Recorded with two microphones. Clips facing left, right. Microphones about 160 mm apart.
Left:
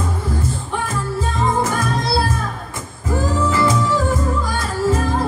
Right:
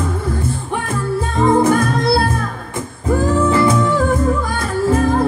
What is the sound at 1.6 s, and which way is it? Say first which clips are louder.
Music: right 6 dB; 55° right (ahead or behind).